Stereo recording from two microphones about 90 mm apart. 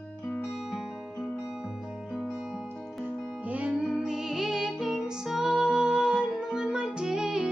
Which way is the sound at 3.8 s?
Centre (ahead or behind).